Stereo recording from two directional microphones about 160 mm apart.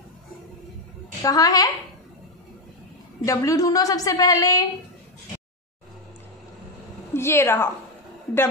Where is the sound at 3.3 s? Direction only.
20° left (ahead or behind).